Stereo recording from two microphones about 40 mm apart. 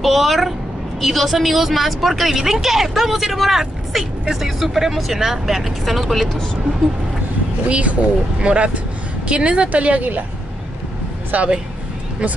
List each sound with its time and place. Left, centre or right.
0.0 s a sound: centre
1.0 s a woman's voice: centre
7.6 s a woman's voice: right
11.3 s a woman's voice: right